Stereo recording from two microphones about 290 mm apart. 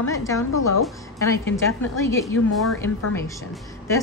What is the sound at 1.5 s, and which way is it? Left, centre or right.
A woman's voice, centre.